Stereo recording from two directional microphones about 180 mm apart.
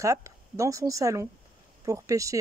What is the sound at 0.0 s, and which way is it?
Speech, 15° right (ahead or behind).